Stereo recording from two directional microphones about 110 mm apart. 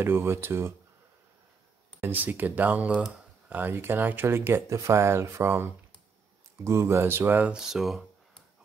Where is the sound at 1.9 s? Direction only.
20° right (ahead or behind).